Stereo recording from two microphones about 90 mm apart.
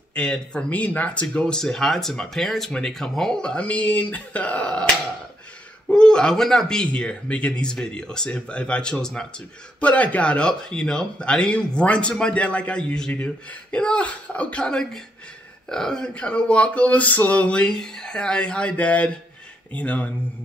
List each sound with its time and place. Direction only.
0.1 s speech: 10° left (ahead or behind)